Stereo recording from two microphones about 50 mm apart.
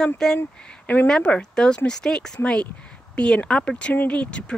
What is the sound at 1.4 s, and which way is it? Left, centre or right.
Speech, centre.